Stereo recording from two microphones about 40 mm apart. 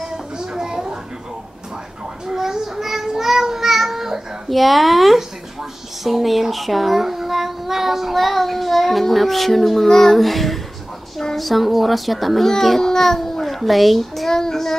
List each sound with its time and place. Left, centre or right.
0.0 s a sound: centre
2.2 s child singing: centre
6.0 s a child's voice: centre
14.3 s child singing: centre